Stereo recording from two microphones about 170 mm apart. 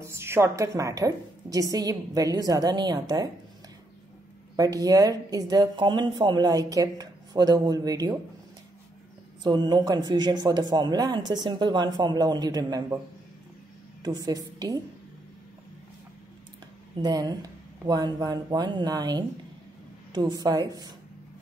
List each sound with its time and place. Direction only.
0.0 s speech: 15° right (ahead or behind)
4.6 s speech: 20° right (ahead or behind)
9.4 s speech: 25° right (ahead or behind)
14.0 s speech: 20° right (ahead or behind)
16.9 s speech: 25° right (ahead or behind)